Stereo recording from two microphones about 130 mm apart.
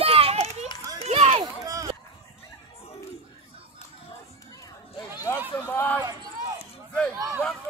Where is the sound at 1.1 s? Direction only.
50° right (ahead or behind).